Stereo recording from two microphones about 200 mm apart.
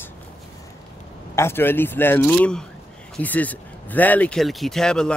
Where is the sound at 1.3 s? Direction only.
10° left (ahead or behind).